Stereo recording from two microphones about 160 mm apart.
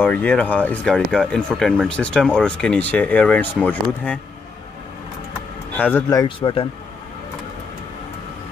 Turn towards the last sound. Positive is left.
turn(degrees=35)  # may be behind; listen again after turning